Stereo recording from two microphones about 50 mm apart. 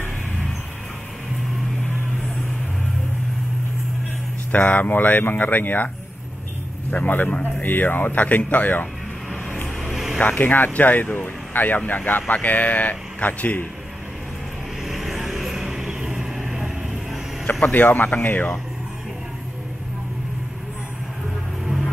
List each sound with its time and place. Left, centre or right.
4.5 s speech: left
6.9 s a man's voice: left
9.8 s music: centre
10.2 s speech: left
14.9 s vehicle: centre
17.5 s speech: left